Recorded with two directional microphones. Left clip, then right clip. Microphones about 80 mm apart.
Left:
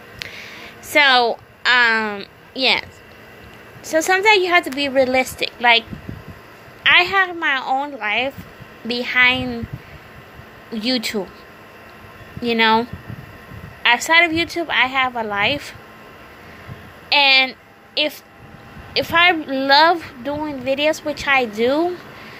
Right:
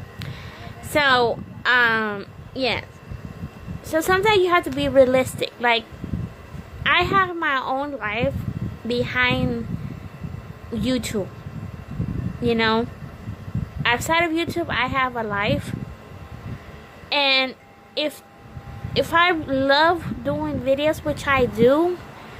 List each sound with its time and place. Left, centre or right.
0.2 s a sound: right
0.9 s speech: right
2.5 s speech: centre
3.8 s a woman's voice: right
4.7 s a woman's voice: right
8.0 s speech: right
10.7 s speech: right
12.4 s speech: right
13.8 s speech: right
17.1 s a woman's voice: right
20.9 s speech: right